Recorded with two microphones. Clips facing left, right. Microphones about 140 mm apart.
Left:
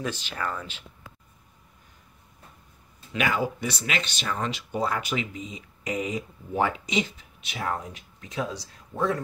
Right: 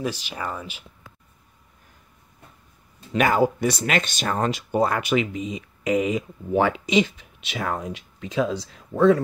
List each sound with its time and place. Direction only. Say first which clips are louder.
0.0 s speech: right 2 dB; 15° right (ahead or behind)
3.1 s speech: right 7 dB; 45° right (ahead or behind); by 9.2 s 90° right